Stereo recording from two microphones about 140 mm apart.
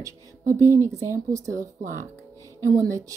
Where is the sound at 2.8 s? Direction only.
25° right (ahead or behind).